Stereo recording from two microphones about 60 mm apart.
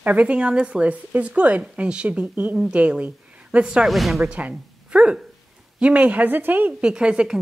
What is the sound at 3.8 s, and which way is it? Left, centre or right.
Speech, centre.